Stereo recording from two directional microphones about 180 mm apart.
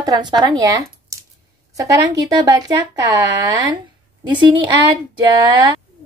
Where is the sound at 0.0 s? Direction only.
20° right (ahead or behind).